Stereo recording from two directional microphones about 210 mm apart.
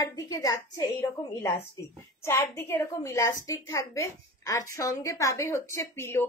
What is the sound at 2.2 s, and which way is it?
A woman's voice, 10° left (ahead or behind).